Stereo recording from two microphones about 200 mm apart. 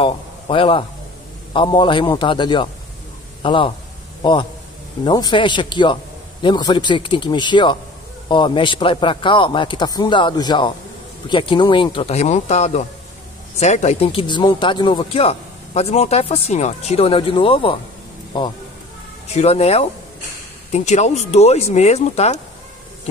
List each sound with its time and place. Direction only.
0.0 s a man's voice: 25° left (ahead or behind)
19.2 s speech: 30° left (ahead or behind)